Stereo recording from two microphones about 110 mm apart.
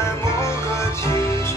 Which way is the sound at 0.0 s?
25° left (ahead or behind).